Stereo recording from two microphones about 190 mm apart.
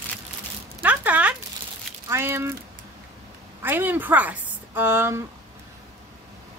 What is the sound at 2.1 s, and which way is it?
Speech, 15° right (ahead or behind).